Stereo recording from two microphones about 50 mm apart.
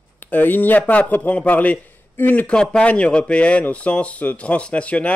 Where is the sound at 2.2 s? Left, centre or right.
Left.